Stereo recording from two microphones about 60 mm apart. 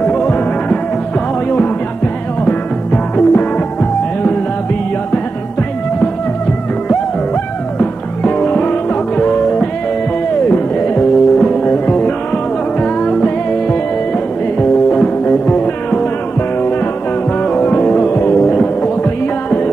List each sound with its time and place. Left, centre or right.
0.0 s music: left
2.4 s music: left
7.8 s music: left
17.4 s music: left